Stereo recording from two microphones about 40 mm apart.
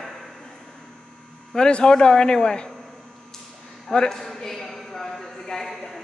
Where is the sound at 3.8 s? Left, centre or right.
Centre.